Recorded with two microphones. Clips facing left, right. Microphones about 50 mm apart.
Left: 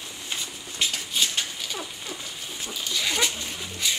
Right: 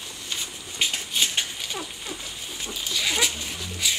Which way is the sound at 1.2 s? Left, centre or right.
Centre.